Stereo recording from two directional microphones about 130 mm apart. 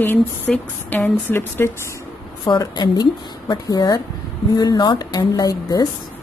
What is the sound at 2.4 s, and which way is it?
A woman's voice, 30° left (ahead or behind).